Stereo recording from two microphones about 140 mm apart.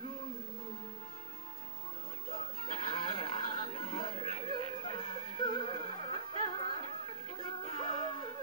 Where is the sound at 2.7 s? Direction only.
40° left (ahead or behind).